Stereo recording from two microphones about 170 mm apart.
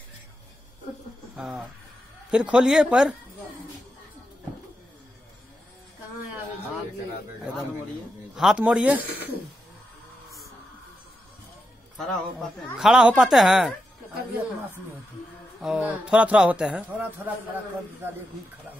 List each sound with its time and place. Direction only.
1.3 s speech: 5° right (ahead or behind)
8.4 s speech: 5° right (ahead or behind)
12.0 s speech: centre (ahead or behind)
15.6 s speech: 5° right (ahead or behind)